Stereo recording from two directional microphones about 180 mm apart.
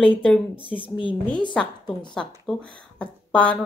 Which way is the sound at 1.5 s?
5° left (ahead or behind).